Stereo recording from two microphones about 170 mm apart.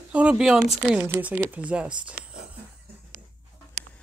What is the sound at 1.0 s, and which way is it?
Speech, 15° right (ahead or behind).